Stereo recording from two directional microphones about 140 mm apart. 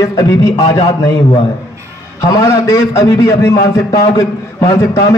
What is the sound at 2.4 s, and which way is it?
A man's voice, 20° left (ahead or behind).